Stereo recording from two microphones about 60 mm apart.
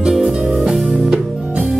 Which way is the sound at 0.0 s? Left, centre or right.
Centre.